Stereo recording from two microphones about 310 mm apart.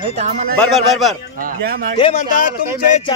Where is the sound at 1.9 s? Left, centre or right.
Left.